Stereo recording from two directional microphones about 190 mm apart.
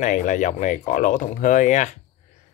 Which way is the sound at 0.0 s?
40° left (ahead or behind).